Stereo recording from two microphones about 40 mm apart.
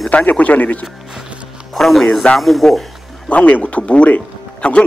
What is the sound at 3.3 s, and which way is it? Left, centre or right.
Speech, left.